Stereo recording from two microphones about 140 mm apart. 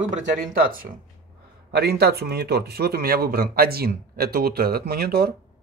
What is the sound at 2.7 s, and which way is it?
Speech, 90° right.